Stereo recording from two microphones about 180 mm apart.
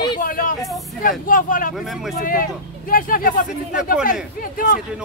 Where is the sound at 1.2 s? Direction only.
50° left (ahead or behind).